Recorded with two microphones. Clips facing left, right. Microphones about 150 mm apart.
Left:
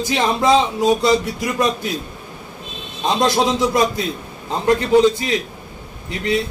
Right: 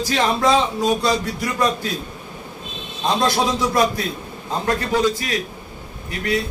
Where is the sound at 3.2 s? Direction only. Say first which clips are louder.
Left 4 dB; 20° left (ahead or behind).